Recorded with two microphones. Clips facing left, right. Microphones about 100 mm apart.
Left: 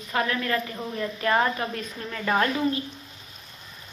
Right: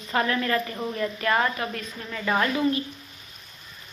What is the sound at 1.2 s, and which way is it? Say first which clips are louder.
Speech: left 2 dB; 20° left (ahead or behind).